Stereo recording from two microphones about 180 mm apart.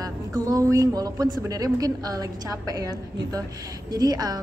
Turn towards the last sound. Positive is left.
turn(degrees=-20)  # may be behind; listen again after turning